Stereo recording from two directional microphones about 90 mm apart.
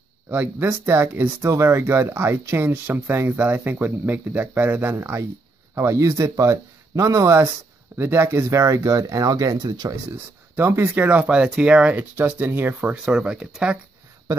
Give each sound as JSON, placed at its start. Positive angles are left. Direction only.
{"t": 0.3, "sound": "speech", "side_deg": -20}
{"t": 10.5, "sound": "speech", "side_deg": -25}